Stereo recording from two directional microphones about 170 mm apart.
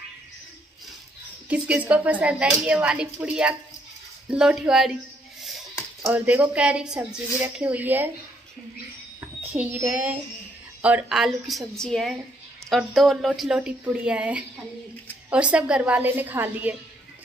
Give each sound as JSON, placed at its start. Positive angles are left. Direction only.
{"t": 1.5, "sound": "speech", "side_deg": -10}
{"t": 9.2, "sound": "a child's voice", "side_deg": -10}